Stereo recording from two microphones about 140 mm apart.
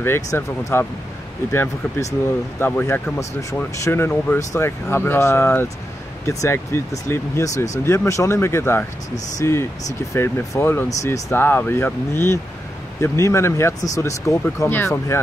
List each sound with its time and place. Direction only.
0.0 s speech: 20° left (ahead or behind)